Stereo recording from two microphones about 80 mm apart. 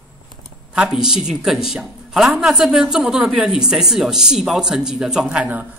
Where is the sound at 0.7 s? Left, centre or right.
Centre.